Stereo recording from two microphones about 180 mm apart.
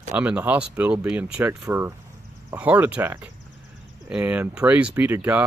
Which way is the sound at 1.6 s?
15° right (ahead or behind).